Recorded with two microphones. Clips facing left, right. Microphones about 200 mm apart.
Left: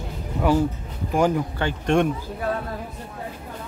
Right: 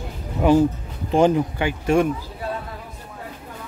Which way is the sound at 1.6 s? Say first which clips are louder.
Even; 5° right (ahead or behind).